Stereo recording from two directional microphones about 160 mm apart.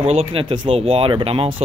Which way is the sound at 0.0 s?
40° right (ahead or behind).